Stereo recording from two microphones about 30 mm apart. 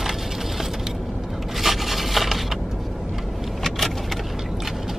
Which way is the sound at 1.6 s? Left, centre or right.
Centre.